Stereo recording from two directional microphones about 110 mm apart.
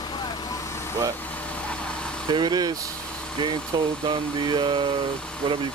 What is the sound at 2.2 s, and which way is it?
Speech, 40° right (ahead or behind).